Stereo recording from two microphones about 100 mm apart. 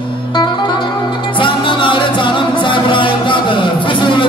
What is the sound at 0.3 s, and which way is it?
Music, 50° left (ahead or behind).